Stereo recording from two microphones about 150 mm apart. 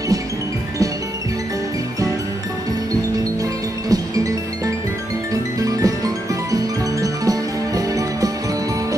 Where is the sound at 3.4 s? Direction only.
25° right (ahead or behind).